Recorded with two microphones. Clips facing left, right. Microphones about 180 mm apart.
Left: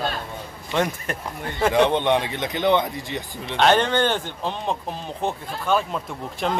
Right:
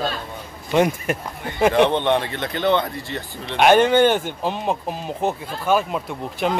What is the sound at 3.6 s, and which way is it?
Speech, 10° right (ahead or behind).